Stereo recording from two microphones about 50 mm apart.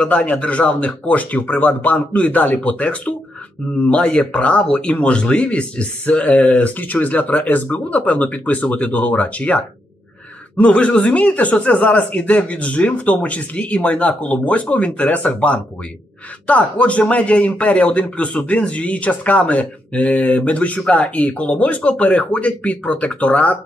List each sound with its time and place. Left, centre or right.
0.0 s speech: left
10.6 s speech: left